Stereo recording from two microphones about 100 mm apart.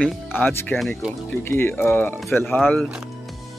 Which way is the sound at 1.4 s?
20° left (ahead or behind).